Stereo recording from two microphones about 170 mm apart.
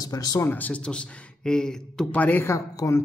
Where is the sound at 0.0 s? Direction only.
20° left (ahead or behind).